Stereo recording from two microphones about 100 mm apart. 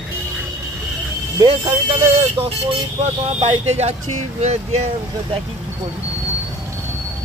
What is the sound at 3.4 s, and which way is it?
Speech, 90° right.